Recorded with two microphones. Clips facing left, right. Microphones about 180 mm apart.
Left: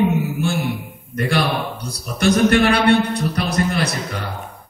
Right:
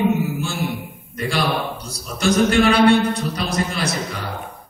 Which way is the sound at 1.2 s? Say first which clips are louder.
Left 2 dB; 60° left (ahead or behind).